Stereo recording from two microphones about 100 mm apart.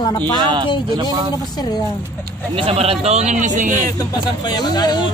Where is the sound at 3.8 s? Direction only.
40° left (ahead or behind).